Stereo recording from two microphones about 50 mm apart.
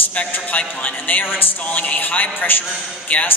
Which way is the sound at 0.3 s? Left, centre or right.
Left.